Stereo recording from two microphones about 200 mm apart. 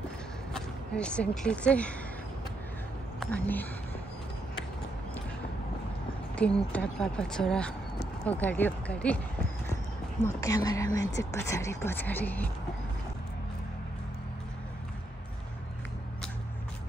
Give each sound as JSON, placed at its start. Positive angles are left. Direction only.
{"t": 0.5, "sound": "speech", "side_deg": 5}
{"t": 3.2, "sound": "speech", "side_deg": 10}
{"t": 6.3, "sound": "a woman's voice", "side_deg": 5}
{"t": 10.2, "sound": "speech", "side_deg": 15}